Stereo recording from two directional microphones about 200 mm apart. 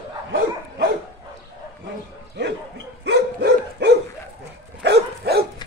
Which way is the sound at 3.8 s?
60° right (ahead or behind).